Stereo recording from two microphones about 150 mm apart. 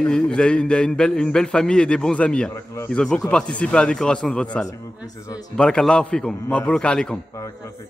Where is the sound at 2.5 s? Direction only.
20° left (ahead or behind).